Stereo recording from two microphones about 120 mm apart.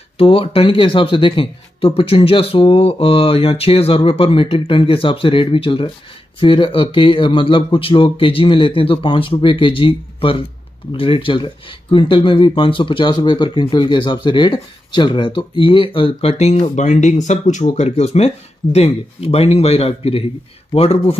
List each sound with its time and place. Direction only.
0.2 s speech: 50° left (ahead or behind)